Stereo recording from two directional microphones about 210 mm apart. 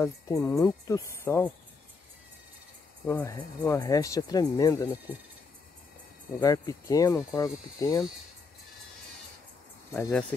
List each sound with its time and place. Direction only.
0.0 s speech: 15° left (ahead or behind)
3.1 s speech: 10° left (ahead or behind)
6.4 s speech: 15° left (ahead or behind)
9.9 s speech: 10° left (ahead or behind)